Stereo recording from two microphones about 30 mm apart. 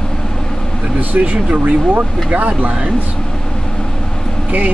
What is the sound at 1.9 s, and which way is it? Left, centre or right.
Speech, right.